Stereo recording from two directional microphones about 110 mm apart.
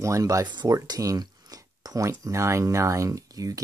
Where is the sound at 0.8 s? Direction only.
30° right (ahead or behind).